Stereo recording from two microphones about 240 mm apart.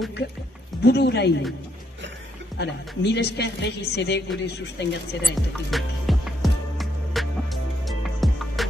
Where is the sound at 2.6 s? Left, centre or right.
Left.